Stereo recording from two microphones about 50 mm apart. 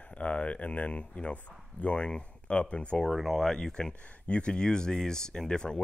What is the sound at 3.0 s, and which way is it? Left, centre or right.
Speech, centre.